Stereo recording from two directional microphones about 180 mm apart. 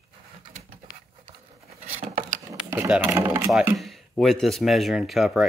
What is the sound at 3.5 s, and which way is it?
Speech, centre (ahead or behind).